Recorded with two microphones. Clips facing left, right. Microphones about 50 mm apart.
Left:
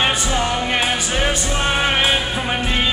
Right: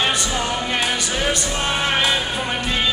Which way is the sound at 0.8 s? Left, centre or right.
Centre.